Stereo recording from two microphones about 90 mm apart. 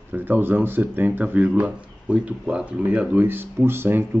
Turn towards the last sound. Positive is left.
turn(degrees=-25)  # may be behind; listen again after turning